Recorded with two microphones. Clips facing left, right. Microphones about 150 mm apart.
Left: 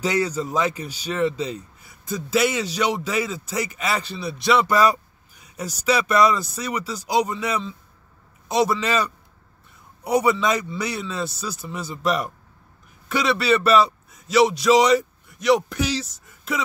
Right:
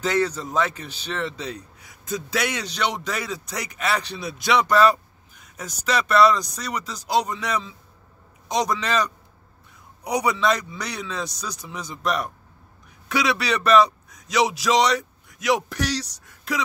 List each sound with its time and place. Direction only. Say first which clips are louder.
0.0 s a man's voice: even; 10° left (ahead or behind)